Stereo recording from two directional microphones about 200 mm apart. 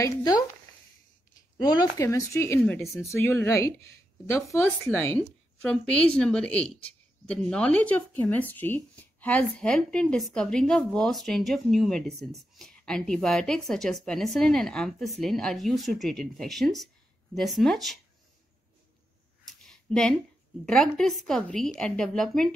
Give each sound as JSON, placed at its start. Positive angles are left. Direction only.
{"t": 0.0, "sound": "a woman's voice", "side_deg": 20}
{"t": 19.4, "sound": "a sound", "side_deg": 0}
{"t": 20.6, "sound": "a woman's voice", "side_deg": 0}